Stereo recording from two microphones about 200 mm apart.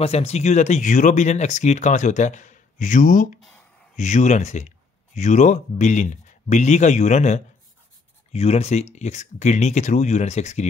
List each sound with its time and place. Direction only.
0.0 s speech: 30° left (ahead or behind)